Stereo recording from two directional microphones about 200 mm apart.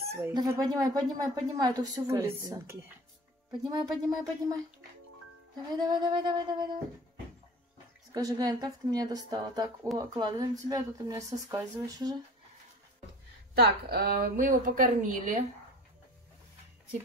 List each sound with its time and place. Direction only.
0.0 s a woman's voice: 15° right (ahead or behind)
5.8 s a woman's voice: 20° right (ahead or behind)
8.1 s a woman's voice: 20° right (ahead or behind)
13.6 s a woman's voice: 50° right (ahead or behind)